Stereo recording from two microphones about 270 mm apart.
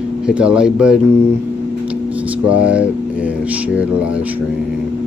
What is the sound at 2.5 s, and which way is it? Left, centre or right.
Speech, centre.